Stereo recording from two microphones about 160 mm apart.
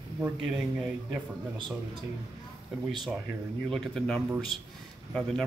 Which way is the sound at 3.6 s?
5° left (ahead or behind).